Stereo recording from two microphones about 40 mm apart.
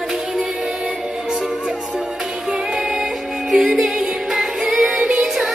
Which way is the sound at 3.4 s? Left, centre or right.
Centre.